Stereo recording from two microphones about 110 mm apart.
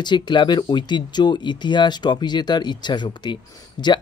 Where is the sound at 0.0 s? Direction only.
45° left (ahead or behind).